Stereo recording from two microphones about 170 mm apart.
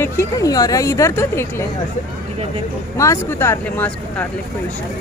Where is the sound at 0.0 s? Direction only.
20° left (ahead or behind).